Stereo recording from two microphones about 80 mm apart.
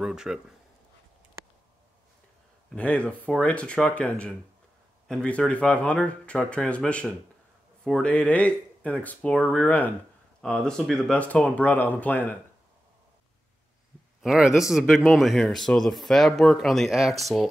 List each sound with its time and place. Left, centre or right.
0.0 s speech: centre
2.7 s speech: centre
10.4 s speech: centre
11.1 s speech: centre
14.2 s speech: centre